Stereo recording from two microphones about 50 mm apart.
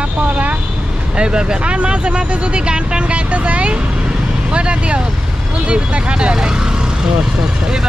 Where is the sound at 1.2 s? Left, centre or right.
Centre.